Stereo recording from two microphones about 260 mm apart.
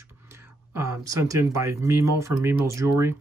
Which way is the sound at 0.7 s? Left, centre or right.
Centre.